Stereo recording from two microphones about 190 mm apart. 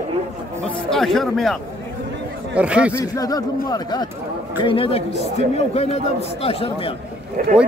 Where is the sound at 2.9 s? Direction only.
20° left (ahead or behind).